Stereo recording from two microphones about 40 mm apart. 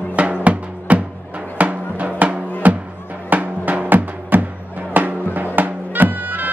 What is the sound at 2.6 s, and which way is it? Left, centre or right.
Music, right.